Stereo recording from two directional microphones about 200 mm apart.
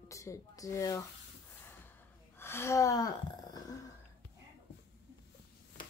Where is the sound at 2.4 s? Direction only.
15° left (ahead or behind).